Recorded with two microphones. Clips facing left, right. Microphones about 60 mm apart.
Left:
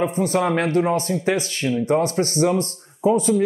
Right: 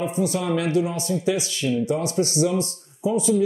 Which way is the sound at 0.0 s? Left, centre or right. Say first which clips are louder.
Left 4 dB; left.